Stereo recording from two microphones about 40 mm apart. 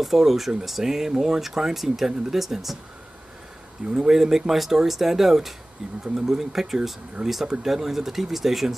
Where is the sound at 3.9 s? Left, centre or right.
Centre.